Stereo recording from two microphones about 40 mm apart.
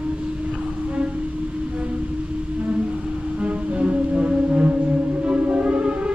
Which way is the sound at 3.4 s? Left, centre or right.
Right.